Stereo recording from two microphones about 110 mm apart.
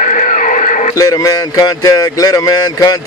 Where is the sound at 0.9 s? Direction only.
30° left (ahead or behind).